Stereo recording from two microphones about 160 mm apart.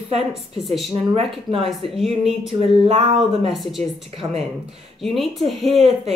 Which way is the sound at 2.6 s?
40° right (ahead or behind).